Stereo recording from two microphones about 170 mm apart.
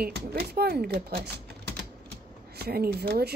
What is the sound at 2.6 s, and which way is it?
Speech, 65° right (ahead or behind).